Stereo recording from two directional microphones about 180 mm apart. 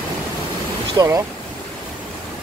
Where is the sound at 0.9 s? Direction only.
20° right (ahead or behind).